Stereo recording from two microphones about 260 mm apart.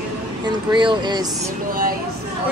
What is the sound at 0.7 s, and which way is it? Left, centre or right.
Speech, centre.